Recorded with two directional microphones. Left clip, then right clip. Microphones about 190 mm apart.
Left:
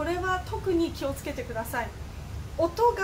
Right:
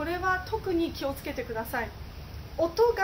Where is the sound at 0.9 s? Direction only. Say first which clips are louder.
Even; 15° right (ahead or behind).